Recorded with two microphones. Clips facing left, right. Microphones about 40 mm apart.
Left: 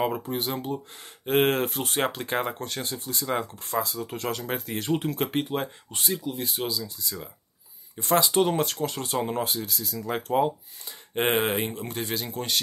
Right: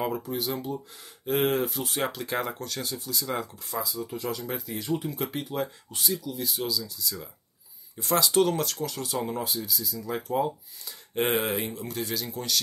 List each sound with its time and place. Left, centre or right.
0.0 s speech: left
8.3 s speech: left
10.9 s speech: left